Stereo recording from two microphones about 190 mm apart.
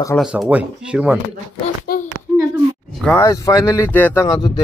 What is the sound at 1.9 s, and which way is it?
Speech, 50° left (ahead or behind).